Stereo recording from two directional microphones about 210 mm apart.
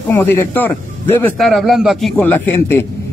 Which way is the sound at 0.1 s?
10° left (ahead or behind).